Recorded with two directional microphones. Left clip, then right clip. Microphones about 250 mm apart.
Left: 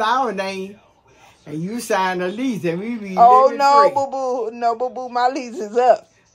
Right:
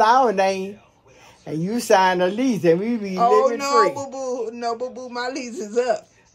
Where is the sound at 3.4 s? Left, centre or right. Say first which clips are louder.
Left 5 dB; centre.